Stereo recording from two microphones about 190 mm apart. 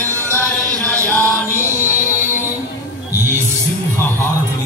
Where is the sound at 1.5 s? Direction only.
15° right (ahead or behind).